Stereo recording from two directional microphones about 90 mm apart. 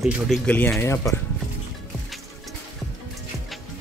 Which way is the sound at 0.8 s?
30° left (ahead or behind).